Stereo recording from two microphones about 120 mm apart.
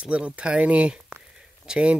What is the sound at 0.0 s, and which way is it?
Speech, 10° right (ahead or behind).